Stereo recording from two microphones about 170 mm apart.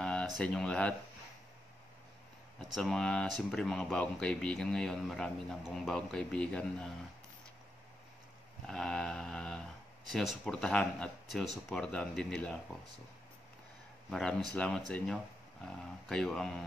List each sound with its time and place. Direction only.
0.0 s speech: 5° left (ahead or behind)
2.6 s speech: centre (ahead or behind)
8.6 s a sound: 5° left (ahead or behind)
10.0 s speech: centre (ahead or behind)
14.5 s speech: 5° left (ahead or behind)